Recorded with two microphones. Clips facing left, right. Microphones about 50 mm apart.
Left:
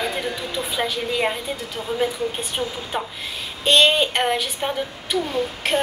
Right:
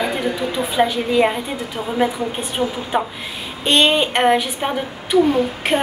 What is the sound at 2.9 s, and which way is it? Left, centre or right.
Female singing, centre.